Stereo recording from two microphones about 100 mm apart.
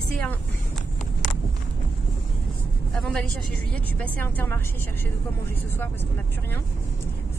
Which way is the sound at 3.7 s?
15° left (ahead or behind).